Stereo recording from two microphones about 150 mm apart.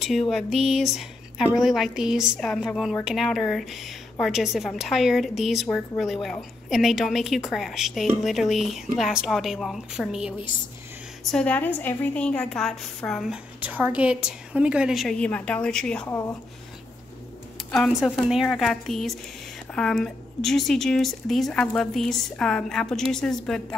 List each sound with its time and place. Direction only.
0.0 s speech: centre (ahead or behind)
11.3 s a woman's voice: 10° left (ahead or behind)
13.6 s speech: 10° right (ahead or behind); by 16.1 s 5° left (ahead or behind)
16.1 s a woman's voice: 15° left (ahead or behind)
17.6 s speech: 5° left (ahead or behind)